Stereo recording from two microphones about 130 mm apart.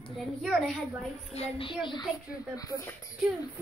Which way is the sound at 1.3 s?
45° left (ahead or behind).